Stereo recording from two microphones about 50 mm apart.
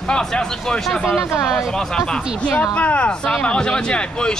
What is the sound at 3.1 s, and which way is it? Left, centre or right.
Speech, centre.